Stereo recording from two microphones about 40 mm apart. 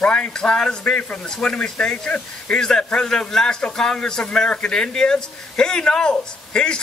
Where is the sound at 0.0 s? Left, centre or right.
Left.